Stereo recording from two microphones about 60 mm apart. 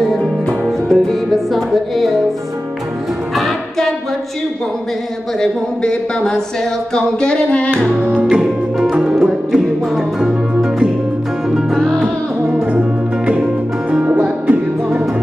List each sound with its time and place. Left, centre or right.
0.0 s music: centre
3.3 s music: centre
5.4 s speech: centre
8.3 s music: centre
13.9 s music: right